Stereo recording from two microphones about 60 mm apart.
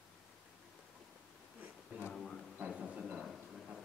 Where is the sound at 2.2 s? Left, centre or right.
Centre.